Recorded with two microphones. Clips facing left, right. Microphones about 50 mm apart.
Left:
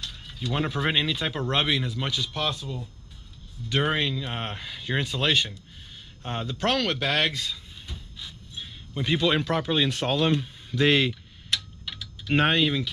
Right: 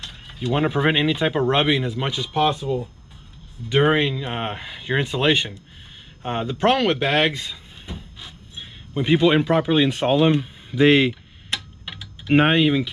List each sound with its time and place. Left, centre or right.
0.0 s speech: right